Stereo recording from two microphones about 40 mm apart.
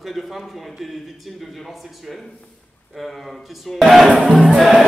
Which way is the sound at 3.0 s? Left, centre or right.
Centre.